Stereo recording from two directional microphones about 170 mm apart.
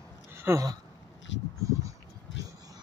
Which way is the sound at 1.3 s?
90° left.